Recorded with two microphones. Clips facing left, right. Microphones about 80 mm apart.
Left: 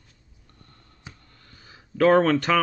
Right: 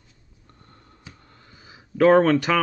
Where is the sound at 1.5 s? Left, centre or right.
Centre.